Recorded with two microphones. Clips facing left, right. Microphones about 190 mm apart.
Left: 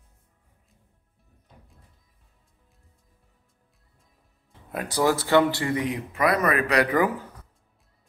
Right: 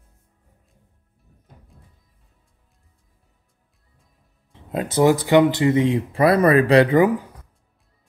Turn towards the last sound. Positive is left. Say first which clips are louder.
# right 7 dB
turn(degrees=-25)  # may be behind; listen again after turning